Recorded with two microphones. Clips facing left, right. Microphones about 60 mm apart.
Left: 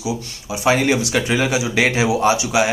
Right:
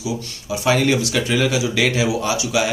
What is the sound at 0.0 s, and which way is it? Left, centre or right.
Speech, centre.